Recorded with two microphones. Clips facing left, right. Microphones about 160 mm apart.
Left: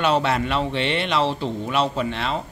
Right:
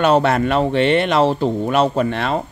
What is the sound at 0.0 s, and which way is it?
Speech, 50° right (ahead or behind).